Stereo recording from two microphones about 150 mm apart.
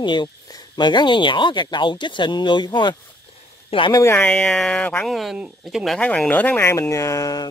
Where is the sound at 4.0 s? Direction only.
15° left (ahead or behind).